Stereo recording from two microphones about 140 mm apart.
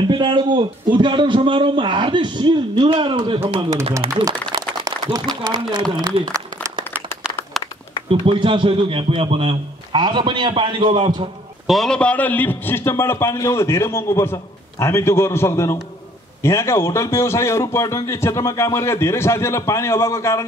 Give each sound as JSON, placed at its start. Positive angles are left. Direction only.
{"t": 0.1, "sound": "a man's voice", "side_deg": -35}
{"t": 4.1, "sound": "a sound", "side_deg": -25}
{"t": 5.4, "sound": "speech", "side_deg": -30}
{"t": 6.1, "sound": "a sound", "side_deg": -30}
{"t": 8.1, "sound": "a man's voice", "side_deg": -35}
{"t": 11.6, "sound": "a man's voice", "side_deg": 0}